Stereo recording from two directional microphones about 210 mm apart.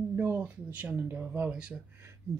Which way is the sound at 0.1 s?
10° right (ahead or behind).